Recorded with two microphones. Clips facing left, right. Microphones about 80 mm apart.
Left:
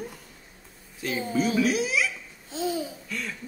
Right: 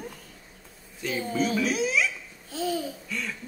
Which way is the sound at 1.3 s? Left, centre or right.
Centre.